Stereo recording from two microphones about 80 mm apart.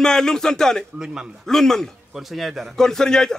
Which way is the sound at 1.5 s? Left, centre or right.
Centre.